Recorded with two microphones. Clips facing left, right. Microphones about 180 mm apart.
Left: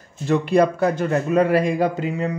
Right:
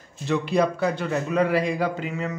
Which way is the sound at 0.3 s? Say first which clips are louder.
Left 5 dB; 50° left (ahead or behind).